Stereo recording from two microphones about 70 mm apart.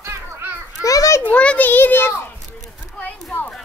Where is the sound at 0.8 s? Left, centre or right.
Left.